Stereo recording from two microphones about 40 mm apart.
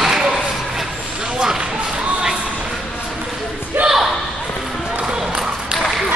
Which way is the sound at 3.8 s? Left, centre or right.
Right.